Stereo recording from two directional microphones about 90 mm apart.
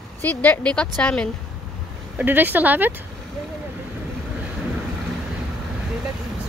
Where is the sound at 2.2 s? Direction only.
20° right (ahead or behind).